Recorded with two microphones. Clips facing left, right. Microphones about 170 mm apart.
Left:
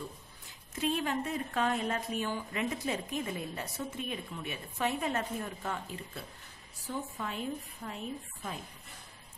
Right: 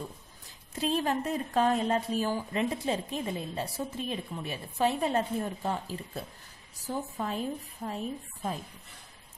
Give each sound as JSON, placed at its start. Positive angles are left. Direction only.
{"t": 0.7, "sound": "speech", "side_deg": -35}